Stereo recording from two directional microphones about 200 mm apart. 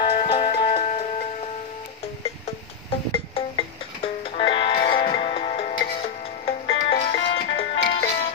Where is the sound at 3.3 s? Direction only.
25° left (ahead or behind).